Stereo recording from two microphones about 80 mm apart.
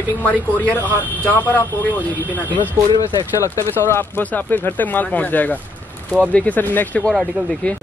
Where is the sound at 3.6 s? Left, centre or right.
Left.